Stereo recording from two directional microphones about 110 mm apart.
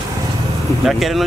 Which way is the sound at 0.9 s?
Centre (ahead or behind).